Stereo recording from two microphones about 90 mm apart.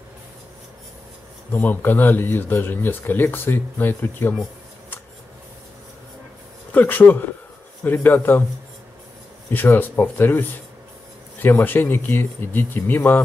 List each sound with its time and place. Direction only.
1.5 s speech: 25° left (ahead or behind)
6.7 s speech: 20° left (ahead or behind)
9.5 s speech: 20° left (ahead or behind)